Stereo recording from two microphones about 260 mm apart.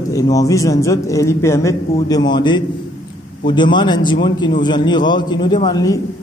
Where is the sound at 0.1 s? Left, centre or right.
Centre.